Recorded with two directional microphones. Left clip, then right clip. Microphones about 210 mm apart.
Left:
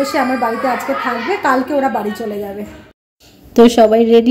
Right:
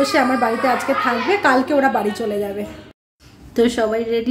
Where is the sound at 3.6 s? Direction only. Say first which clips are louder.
Left 9 dB; 25° left (ahead or behind).